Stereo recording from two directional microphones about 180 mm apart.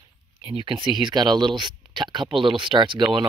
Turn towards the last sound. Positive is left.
turn(degrees=-25)  # may be behind; listen again after turning